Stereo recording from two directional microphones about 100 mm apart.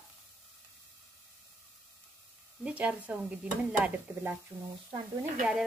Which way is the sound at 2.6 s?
15° right (ahead or behind).